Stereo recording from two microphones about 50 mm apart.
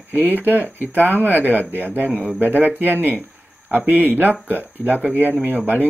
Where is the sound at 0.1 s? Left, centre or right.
Right.